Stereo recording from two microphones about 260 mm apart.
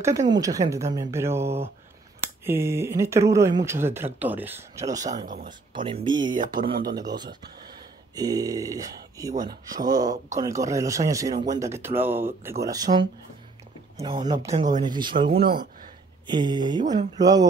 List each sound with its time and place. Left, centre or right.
0.2 s speech: centre
4.9 s speech: right
6.3 s speech: right
7.0 s speech: centre
11.3 s speech: right
11.6 s speech: centre
13.9 s speech: centre
15.2 s speech: right
16.3 s speech: centre